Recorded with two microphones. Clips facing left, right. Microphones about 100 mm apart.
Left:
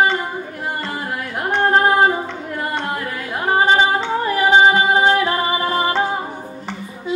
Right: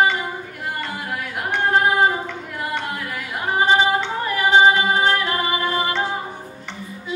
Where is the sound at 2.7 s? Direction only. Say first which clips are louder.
Left 3 dB; 35° left (ahead or behind).